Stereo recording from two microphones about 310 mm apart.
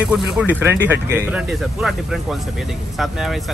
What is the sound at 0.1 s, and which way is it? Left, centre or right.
Speech, centre.